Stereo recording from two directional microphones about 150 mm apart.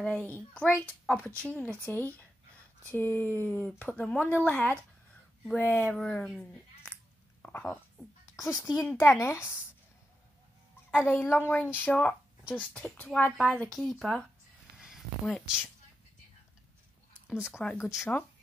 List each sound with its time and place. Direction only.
0.0 s speech: 10° left (ahead or behind)
11.1 s speech: 10° left (ahead or behind)
15.2 s speech: centre (ahead or behind)
17.5 s speech: 5° left (ahead or behind)
17.8 s speech: 20° left (ahead or behind)